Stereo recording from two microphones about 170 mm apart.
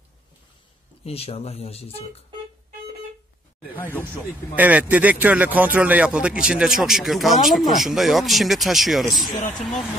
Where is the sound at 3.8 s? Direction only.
10° left (ahead or behind).